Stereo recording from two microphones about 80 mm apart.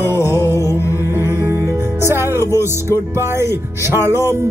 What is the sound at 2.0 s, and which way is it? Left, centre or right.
Speech, right.